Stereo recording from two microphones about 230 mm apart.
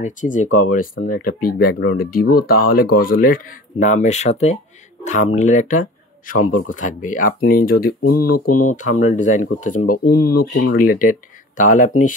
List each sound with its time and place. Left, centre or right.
0.0 s speech: left
8.0 s speech: left
8.7 s speech: left
10.5 s speech: left